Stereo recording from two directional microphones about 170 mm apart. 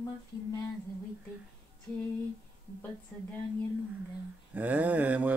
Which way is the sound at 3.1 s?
5° left (ahead or behind).